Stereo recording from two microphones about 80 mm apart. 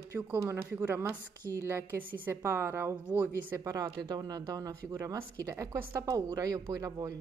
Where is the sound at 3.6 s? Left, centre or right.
Right.